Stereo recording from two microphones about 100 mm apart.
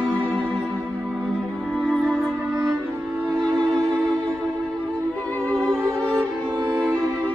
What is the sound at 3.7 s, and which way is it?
Music, 5° left (ahead or behind).